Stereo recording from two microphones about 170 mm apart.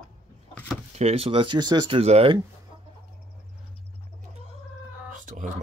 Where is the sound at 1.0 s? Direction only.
35° right (ahead or behind).